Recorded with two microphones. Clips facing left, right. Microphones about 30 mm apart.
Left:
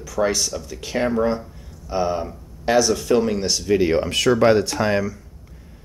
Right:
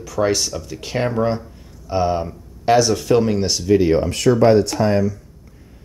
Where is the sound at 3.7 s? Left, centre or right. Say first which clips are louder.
Right 3 dB; centre.